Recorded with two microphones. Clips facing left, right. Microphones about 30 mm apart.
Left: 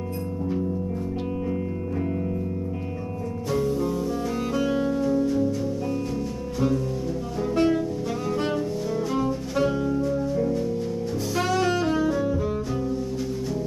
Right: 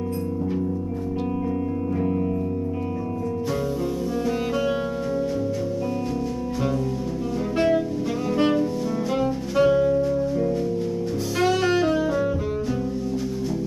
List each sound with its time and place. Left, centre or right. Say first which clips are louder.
2.0 s music: right 3 dB; centre
3.5 s music: left 1 dB; centre
7.5 s music: right 1 dB; centre
11.4 s saxophone: right 4 dB; centre